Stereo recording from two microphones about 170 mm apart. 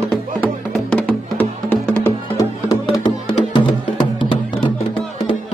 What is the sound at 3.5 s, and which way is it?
Music, 30° left (ahead or behind).